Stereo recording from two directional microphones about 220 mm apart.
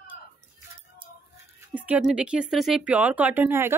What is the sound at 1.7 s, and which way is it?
Speech, 5° right (ahead or behind).